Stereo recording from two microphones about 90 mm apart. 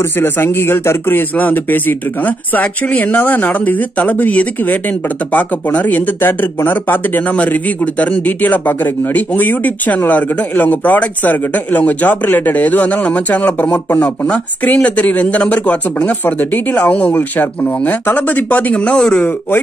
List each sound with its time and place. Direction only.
0.2 s speech: 25° left (ahead or behind)